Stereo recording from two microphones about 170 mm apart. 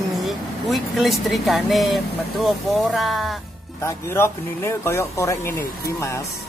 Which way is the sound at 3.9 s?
15° left (ahead or behind).